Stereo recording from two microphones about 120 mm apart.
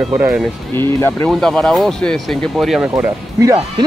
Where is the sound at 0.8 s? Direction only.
20° left (ahead or behind).